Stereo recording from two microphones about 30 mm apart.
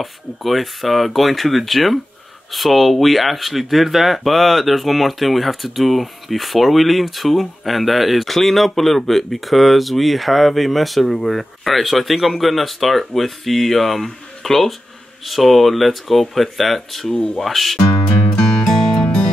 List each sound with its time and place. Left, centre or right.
0.0 s speech: centre
18.3 s music: left